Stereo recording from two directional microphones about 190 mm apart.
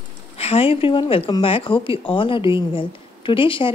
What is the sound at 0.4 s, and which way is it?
A woman's voice, 30° left (ahead or behind).